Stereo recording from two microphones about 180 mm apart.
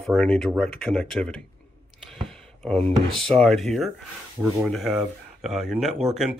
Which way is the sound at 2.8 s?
35° right (ahead or behind).